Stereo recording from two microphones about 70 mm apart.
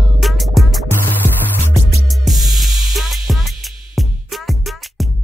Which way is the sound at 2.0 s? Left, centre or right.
Centre.